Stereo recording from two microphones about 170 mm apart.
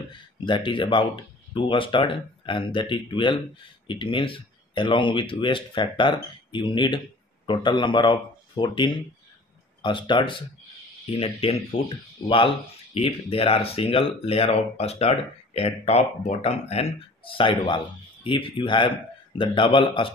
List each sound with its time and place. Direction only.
0.1 s speech: 30° left (ahead or behind)